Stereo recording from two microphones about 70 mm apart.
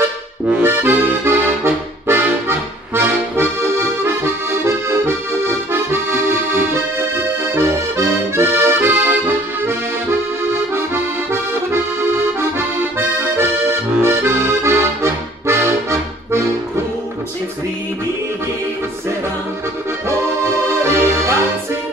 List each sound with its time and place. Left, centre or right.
0.6 s accordion: right
20.4 s music: right